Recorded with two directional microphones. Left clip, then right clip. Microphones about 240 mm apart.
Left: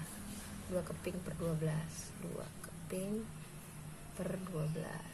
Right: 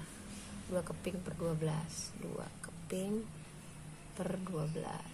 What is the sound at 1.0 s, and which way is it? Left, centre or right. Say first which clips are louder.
Speech: right 1 dB; centre.